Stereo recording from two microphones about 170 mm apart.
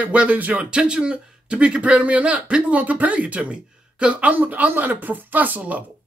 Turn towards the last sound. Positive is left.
turn(degrees=-10)  # may be behind; listen again after turning